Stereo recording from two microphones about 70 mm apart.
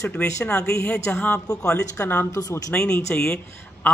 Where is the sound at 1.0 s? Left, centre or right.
Left.